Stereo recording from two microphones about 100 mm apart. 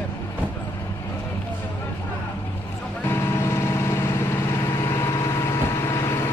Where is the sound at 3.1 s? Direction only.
25° left (ahead or behind).